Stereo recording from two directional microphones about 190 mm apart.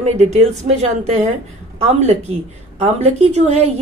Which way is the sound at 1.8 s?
35° right (ahead or behind).